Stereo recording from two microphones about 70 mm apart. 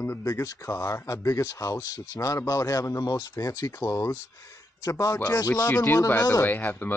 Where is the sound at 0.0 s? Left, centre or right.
Left.